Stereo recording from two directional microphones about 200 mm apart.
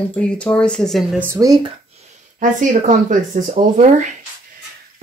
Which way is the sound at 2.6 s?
40° right (ahead or behind).